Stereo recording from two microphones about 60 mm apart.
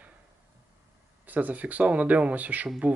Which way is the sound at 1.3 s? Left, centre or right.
Right.